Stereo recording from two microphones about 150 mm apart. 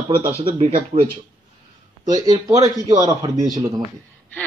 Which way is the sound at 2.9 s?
25° right (ahead or behind).